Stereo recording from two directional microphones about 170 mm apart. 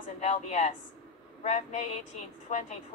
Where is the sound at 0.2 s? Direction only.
45° left (ahead or behind).